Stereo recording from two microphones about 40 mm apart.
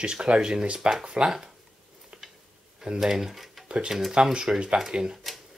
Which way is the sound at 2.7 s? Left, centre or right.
Centre.